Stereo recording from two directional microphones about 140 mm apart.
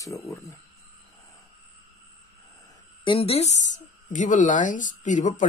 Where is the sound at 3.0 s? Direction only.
40° left (ahead or behind).